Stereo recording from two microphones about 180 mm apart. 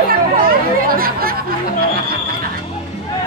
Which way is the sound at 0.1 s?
55° right (ahead or behind).